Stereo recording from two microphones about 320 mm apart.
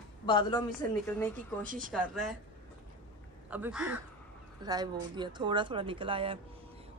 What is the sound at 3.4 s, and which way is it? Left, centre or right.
Speech, centre.